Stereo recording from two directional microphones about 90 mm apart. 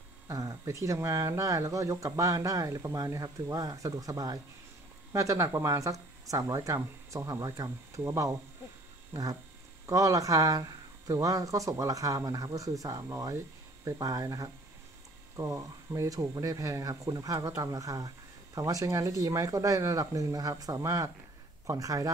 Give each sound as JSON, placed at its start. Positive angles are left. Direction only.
{"t": 0.3, "sound": "speech", "side_deg": -40}